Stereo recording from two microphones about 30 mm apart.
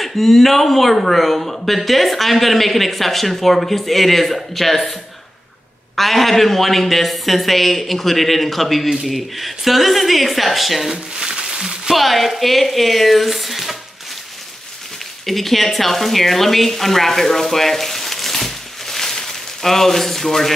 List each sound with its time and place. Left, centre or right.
0.0 s speech: centre
5.9 s speech: centre
11.1 s a sound: right
11.9 s speech: centre
15.2 s speech: centre